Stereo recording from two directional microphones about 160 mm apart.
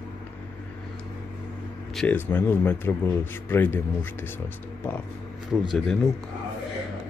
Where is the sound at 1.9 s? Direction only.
10° left (ahead or behind).